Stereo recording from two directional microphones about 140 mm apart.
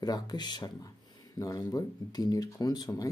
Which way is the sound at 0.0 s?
30° left (ahead or behind).